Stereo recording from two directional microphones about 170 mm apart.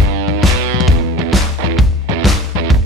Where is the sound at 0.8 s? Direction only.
Centre (ahead or behind).